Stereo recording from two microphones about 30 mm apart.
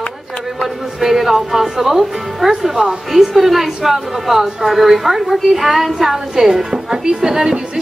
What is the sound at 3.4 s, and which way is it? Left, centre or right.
Speech, centre.